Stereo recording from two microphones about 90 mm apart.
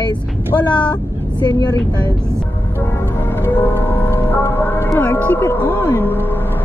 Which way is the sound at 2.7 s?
25° left (ahead or behind).